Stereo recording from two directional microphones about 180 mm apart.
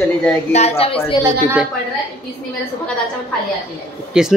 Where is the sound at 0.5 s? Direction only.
35° left (ahead or behind).